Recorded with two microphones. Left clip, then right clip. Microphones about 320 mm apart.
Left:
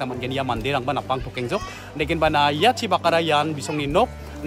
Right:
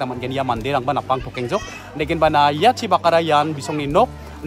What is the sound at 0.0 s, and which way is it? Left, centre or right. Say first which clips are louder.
Speech: right 3 dB; centre.